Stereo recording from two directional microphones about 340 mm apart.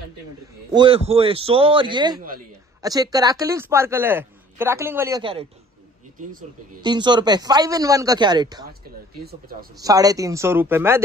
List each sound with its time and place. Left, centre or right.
0.7 s a man's voice: centre
6.8 s a man's voice: centre
9.2 s speech: right
9.8 s a man's voice: centre